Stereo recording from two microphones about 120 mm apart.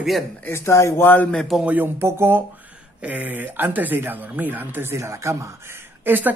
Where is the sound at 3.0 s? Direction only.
10° right (ahead or behind).